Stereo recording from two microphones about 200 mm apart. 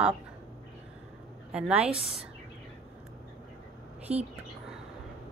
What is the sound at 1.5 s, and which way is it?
Speech, 5° right (ahead or behind).